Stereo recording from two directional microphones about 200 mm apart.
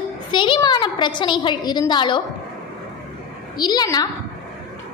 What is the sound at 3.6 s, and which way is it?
Speech, 20° left (ahead or behind).